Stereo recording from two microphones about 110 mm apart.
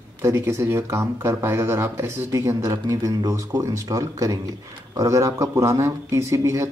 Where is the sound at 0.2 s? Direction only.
25° right (ahead or behind).